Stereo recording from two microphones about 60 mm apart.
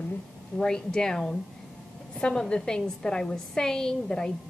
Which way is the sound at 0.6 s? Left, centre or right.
Centre.